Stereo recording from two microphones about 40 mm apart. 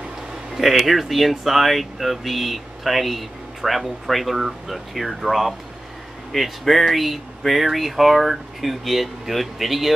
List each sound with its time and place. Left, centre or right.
0.6 s speech: centre